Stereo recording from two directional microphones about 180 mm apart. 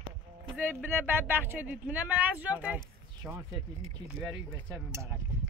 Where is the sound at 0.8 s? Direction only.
10° right (ahead or behind).